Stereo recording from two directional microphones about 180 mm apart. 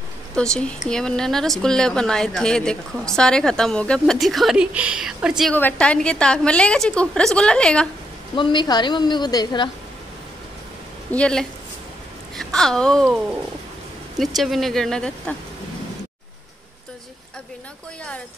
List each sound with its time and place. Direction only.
0.4 s speech: 5° left (ahead or behind)
5.5 s speech: 10° left (ahead or behind)
8.4 s a woman's voice: 25° left (ahead or behind)
11.1 s speech: 5° left (ahead or behind)